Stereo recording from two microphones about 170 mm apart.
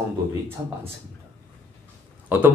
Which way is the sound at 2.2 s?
10° right (ahead or behind).